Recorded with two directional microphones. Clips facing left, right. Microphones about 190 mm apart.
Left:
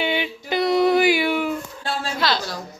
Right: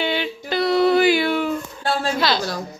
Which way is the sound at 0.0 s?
15° left (ahead or behind).